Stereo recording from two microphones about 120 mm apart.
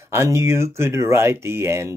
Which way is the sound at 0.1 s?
20° right (ahead or behind).